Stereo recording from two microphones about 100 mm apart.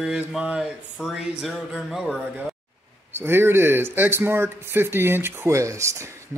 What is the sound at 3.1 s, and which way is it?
Speech, 25° right (ahead or behind).